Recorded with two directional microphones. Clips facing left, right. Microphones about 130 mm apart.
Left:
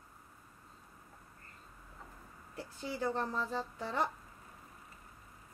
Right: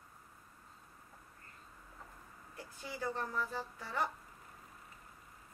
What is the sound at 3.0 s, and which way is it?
A woman's voice, 25° left (ahead or behind).